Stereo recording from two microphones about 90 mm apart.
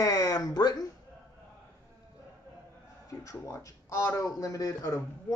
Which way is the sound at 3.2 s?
35° left (ahead or behind).